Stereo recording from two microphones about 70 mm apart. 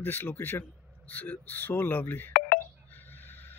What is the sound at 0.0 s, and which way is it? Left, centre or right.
Speech, left.